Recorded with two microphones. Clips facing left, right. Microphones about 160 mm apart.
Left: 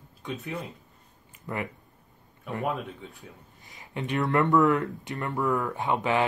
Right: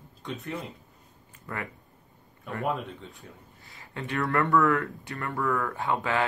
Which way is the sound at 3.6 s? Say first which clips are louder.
Left 3 dB; 20° left (ahead or behind).